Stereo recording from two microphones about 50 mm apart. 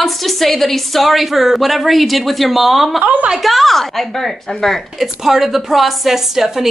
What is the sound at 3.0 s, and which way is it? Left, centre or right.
Speech, right.